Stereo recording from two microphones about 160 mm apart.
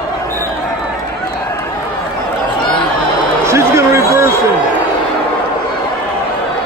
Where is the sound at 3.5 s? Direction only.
20° right (ahead or behind).